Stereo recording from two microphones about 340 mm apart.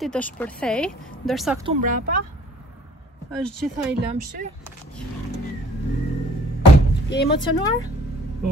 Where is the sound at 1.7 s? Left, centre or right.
Right.